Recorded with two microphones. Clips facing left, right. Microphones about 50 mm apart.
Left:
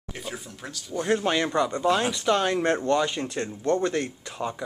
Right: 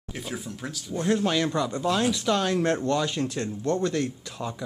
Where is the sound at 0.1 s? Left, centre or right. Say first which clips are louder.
Right 2 dB; centre.